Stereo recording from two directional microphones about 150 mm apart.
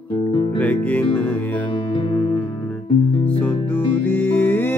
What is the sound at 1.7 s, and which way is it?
Music, 30° left (ahead or behind).